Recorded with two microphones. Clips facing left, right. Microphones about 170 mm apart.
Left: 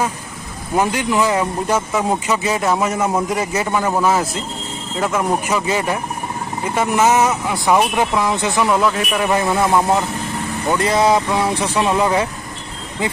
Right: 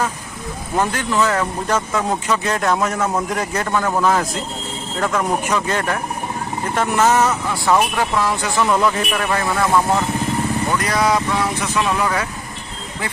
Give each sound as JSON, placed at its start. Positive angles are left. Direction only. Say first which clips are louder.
{"t": 0.7, "sound": "a man's voice", "louder": "left 2 dB", "side_deg": 10}
{"t": 8.6, "sound": "speech", "louder": "right 1 dB", "side_deg": 5}
{"t": 9.3, "sound": "speech", "louder": "left 2 dB", "side_deg": 20}